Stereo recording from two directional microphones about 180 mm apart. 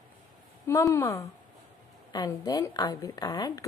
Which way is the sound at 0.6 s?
15° left (ahead or behind).